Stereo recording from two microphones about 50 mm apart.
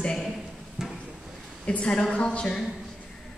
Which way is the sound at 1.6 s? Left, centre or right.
Left.